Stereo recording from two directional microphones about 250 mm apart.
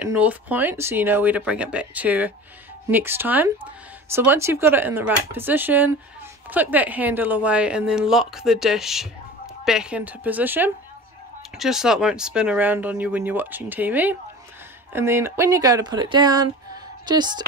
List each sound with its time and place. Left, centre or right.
0.0 s a woman's voice: centre